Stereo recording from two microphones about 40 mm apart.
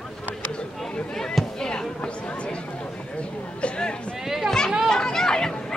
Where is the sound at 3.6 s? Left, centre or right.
Left.